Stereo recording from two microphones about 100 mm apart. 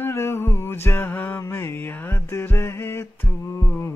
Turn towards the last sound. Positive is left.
turn(degrees=25)  # may be behind; listen again after turning